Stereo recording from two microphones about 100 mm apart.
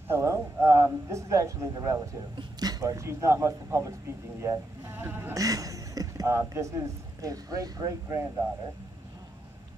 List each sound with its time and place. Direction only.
0.1 s speech: 30° right (ahead or behind)
5.4 s a sound: 35° right (ahead or behind)
7.2 s speech: 35° right (ahead or behind)